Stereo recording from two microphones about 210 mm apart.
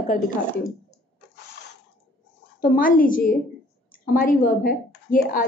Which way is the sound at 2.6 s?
40° left (ahead or behind).